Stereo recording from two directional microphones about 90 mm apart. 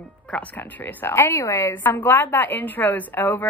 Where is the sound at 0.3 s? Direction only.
20° left (ahead or behind).